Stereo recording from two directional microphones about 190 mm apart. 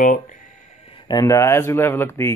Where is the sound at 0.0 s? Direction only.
45° left (ahead or behind).